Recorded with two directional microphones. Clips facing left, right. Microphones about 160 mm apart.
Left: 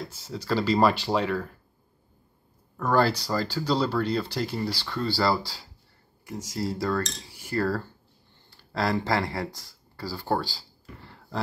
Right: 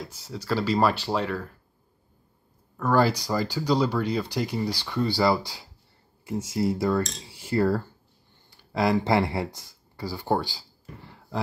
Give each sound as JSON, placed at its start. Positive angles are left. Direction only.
{"t": 0.0, "sound": "speech", "side_deg": -10}
{"t": 2.8, "sound": "speech", "side_deg": -10}
{"t": 6.5, "sound": "cutlery", "side_deg": -20}
{"t": 8.5, "sound": "speech", "side_deg": -15}
{"t": 11.1, "sound": "a sound", "side_deg": -10}